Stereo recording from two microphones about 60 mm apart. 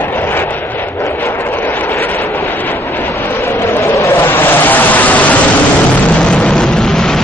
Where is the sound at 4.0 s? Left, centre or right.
Left.